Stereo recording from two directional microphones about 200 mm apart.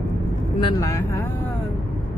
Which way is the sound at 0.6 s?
15° left (ahead or behind).